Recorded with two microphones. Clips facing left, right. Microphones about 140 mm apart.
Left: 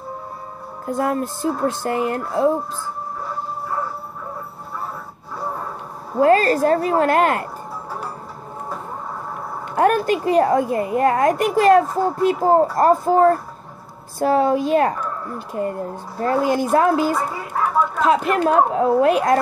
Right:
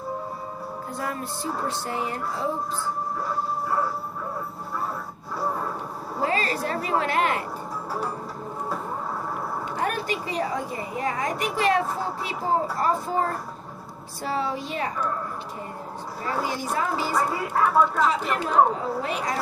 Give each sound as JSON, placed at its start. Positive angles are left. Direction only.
{"t": 0.9, "sound": "speech", "side_deg": 45}
{"t": 6.2, "sound": "speech", "side_deg": 45}
{"t": 9.8, "sound": "speech", "side_deg": 50}